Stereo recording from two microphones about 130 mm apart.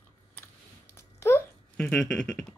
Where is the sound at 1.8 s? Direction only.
5° left (ahead or behind).